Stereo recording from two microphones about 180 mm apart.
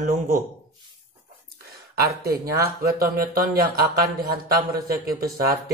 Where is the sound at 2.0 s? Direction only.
60° right (ahead or behind).